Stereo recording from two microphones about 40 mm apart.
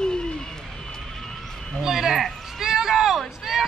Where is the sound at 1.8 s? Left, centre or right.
Centre.